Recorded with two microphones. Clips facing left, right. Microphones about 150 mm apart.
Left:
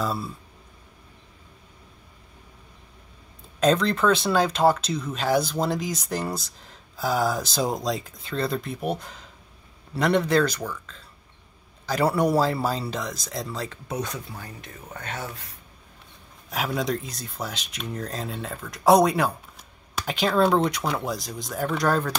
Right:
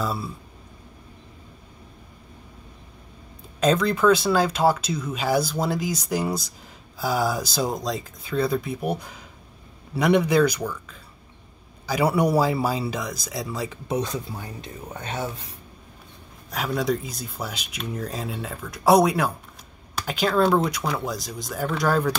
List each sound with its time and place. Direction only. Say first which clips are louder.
0.0 s speech: even; 5° right (ahead or behind)
3.5 s speech: even; centre (ahead or behind)
13.8 s speech: right 7 dB; 25° right (ahead or behind)
16.4 s speech: right 2 dB; centre (ahead or behind)